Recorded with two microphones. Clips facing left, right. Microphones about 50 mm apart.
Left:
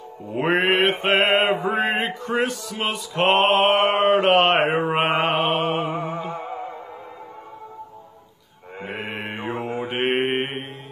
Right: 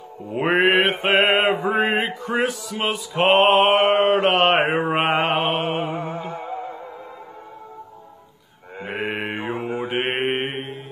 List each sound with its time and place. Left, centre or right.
0.4 s mantra: centre
5.9 s music: left
8.8 s mantra: right
9.4 s mantra: centre